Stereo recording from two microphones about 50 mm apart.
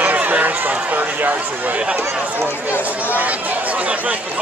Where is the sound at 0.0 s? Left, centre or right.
Right.